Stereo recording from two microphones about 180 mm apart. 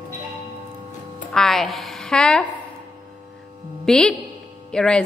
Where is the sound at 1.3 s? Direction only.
Centre (ahead or behind).